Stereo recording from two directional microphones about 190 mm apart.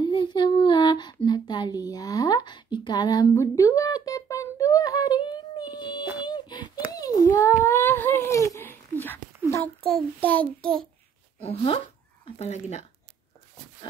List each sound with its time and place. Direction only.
0.0 s child singing: 25° left (ahead or behind)
6.2 s a sound: 20° left (ahead or behind)
7.0 s dog: 20° left (ahead or behind)
9.8 s child singing: 5° left (ahead or behind)
11.3 s speech: 30° left (ahead or behind)